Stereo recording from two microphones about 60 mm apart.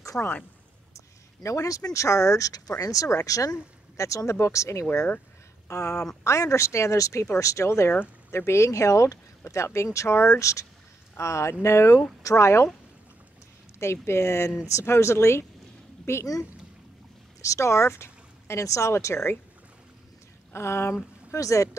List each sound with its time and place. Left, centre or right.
0.1 s speech: left
1.4 s speech: left
3.9 s a woman's voice: left
13.7 s speech: left
17.4 s speech: left
20.5 s speech: left
21.3 s speech: left